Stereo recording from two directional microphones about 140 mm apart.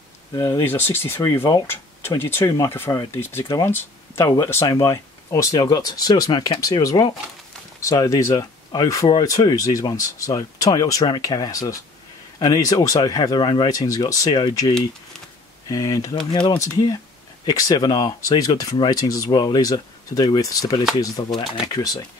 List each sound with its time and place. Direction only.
0.3 s speech: 30° left (ahead or behind)
0.7 s speech: 15° left (ahead or behind)
15.7 s speech: 25° left (ahead or behind)